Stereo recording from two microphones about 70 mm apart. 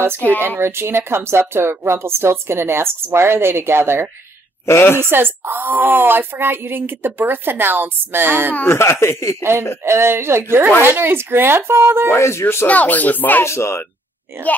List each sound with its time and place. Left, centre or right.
0.6 s a woman's voice: right
4.6 s speech: left
5.1 s a woman's voice: right
8.6 s speech: left
9.8 s a woman's voice: right
12.1 s speech: left
12.6 s speech: left
13.5 s speech: left
14.3 s a woman's voice: right